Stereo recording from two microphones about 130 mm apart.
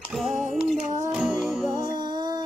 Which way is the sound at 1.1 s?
5° right (ahead or behind).